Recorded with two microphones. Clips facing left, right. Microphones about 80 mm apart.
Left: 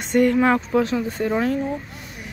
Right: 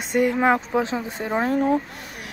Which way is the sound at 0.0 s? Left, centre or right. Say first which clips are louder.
Left 2 dB; centre.